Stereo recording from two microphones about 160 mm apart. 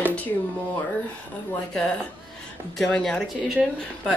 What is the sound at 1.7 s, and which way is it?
Speech, 5° left (ahead or behind).